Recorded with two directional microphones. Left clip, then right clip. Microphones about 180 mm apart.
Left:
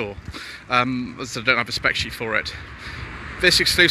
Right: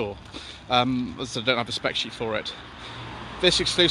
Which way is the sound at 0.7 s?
5° right (ahead or behind).